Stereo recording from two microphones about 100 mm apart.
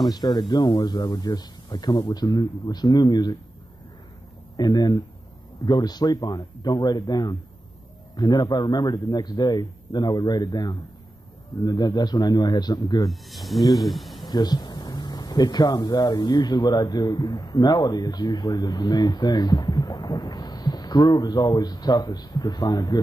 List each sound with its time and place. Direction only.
0.1 s speech: 40° left (ahead or behind)
4.6 s speech: 45° left (ahead or behind)
13.1 s speech: centre (ahead or behind)
14.2 s speech: 40° left (ahead or behind)